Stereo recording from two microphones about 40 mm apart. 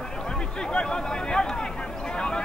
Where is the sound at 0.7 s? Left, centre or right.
Left.